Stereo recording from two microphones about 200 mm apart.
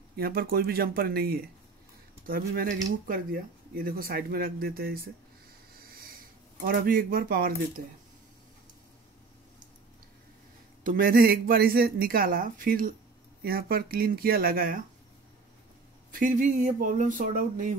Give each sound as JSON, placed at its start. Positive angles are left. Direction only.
{"t": 0.1, "sound": "speech", "side_deg": -50}
{"t": 5.8, "sound": "wheeze", "side_deg": -50}
{"t": 6.6, "sound": "speech", "side_deg": -45}
{"t": 10.8, "sound": "speech", "side_deg": -45}
{"t": 16.1, "sound": "speech", "side_deg": -45}